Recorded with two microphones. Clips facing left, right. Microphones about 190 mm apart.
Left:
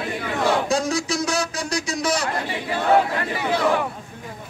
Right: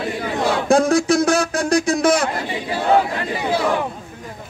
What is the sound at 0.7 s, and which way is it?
A man's voice, 55° right (ahead or behind).